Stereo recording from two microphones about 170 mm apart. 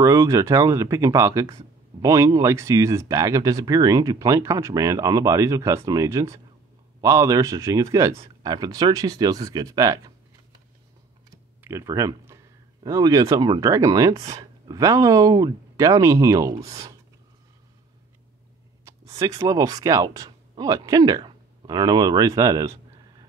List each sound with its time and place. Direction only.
0.0 s a man's voice: 20° right (ahead or behind)
11.6 s speech: 20° right (ahead or behind)
18.9 s speech: 20° right (ahead or behind)